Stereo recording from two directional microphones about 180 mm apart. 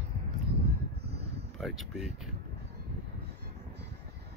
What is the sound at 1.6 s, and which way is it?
Speech, centre (ahead or behind).